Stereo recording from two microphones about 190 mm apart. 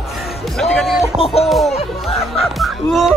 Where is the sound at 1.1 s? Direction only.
30° left (ahead or behind).